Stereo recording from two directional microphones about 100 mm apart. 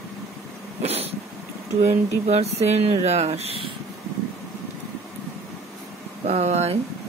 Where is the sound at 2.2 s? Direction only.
90° right.